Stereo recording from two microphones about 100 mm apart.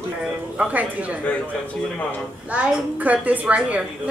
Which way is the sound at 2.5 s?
10° right (ahead or behind).